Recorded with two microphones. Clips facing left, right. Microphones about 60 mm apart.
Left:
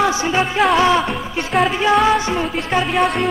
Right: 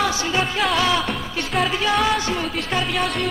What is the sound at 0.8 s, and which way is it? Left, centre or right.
Music, left.